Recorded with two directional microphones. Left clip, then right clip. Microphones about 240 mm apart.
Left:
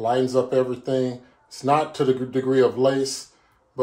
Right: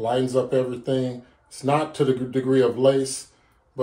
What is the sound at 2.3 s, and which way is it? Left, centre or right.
Speech, left.